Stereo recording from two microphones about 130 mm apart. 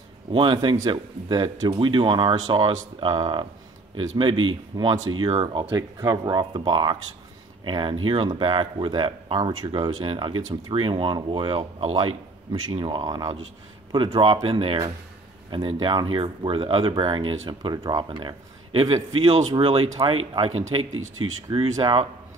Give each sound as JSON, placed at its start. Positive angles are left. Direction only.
{"t": 0.3, "sound": "speech", "side_deg": -40}
{"t": 5.7, "sound": "speech", "side_deg": -25}
{"t": 19.2, "sound": "speech", "side_deg": -55}